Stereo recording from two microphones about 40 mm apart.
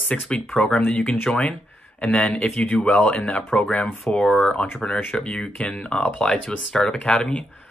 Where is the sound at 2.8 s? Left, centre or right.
Left.